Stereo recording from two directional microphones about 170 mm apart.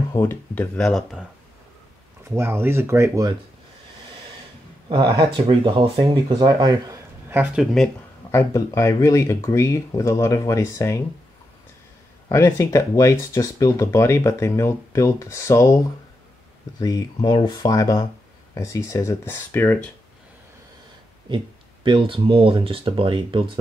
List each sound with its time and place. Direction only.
0.1 s speech: 15° left (ahead or behind)
0.7 s speech: centre (ahead or behind)
2.2 s speech: 15° right (ahead or behind)
4.8 s speech: 30° right (ahead or behind); by 7.6 s 10° right (ahead or behind)
7.6 s speech: centre (ahead or behind)
8.3 s speech: 15° left (ahead or behind)
12.3 s speech: 15° left (ahead or behind)
16.8 s speech: 25° left (ahead or behind)
21.3 s speech: 25° right (ahead or behind)